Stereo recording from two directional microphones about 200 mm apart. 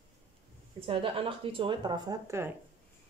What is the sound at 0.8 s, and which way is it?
Speech, 25° right (ahead or behind).